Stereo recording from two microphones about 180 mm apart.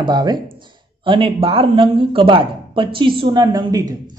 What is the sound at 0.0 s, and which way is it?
Speech, 25° right (ahead or behind).